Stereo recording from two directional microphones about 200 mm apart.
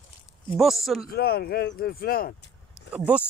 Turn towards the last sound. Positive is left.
turn(degrees=-5)  # may be behind; listen again after turning